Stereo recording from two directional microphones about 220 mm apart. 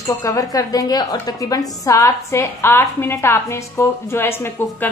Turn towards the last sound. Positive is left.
turn(degrees=10)  # may be behind; listen again after turning